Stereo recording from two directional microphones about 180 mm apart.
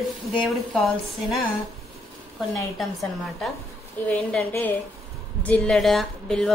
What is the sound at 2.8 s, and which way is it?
A woman's voice, centre (ahead or behind).